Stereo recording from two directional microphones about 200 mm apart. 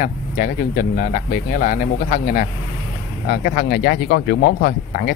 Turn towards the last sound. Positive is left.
turn(degrees=50)  # may be behind; listen again after turning